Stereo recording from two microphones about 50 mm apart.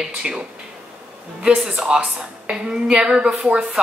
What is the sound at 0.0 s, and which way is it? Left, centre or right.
Speech, centre.